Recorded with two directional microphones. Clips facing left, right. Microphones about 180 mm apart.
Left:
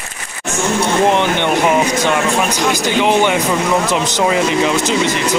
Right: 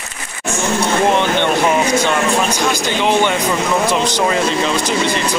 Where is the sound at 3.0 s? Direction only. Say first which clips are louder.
Left 2 dB; 15° left (ahead or behind).